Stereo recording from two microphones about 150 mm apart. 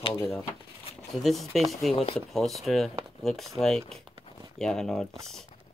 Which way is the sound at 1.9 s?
40° left (ahead or behind).